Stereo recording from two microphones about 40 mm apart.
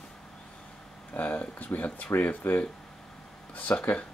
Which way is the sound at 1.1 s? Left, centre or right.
Left.